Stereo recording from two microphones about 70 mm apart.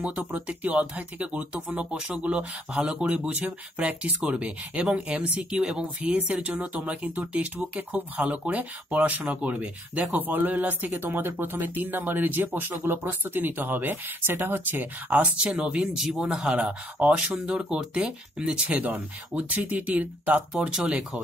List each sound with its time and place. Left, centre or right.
0.0 s speech: centre
15.0 s speech: centre
17.2 s speech: centre